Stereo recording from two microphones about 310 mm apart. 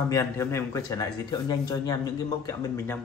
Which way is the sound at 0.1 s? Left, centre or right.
Centre.